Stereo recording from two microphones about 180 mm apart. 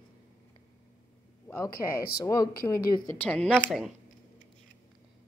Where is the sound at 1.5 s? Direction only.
15° left (ahead or behind).